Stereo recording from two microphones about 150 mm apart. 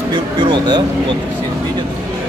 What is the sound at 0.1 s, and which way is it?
Speech, 30° right (ahead or behind).